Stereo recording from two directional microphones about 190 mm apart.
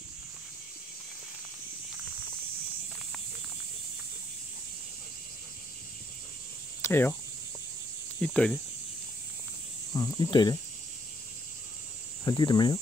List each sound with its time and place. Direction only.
6.8 s speech: 10° left (ahead or behind)
8.2 s speech: 5° left (ahead or behind)
9.9 s speech: 20° left (ahead or behind)
12.3 s speech: 20° left (ahead or behind)